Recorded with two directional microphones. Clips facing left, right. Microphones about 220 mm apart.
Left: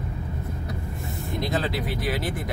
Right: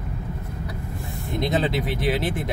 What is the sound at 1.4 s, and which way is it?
Speech, 20° right (ahead or behind).